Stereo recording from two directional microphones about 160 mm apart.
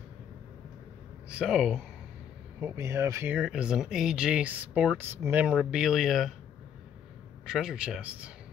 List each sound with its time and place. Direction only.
1.3 s speech: 5° right (ahead or behind)
2.6 s speech: 15° right (ahead or behind)
3.3 s speech: 5° right (ahead or behind)
7.4 s speech: 5° right (ahead or behind)